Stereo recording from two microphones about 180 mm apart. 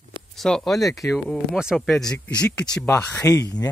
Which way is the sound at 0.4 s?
5° left (ahead or behind).